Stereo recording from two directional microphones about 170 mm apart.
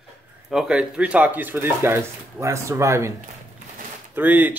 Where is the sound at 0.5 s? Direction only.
5° right (ahead or behind).